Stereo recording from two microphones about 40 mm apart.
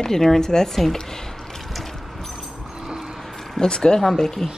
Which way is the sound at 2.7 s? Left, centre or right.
Centre.